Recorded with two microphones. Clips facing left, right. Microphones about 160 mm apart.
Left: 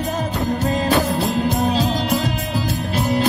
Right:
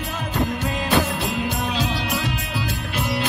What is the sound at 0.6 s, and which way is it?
Music, 40° left (ahead or behind).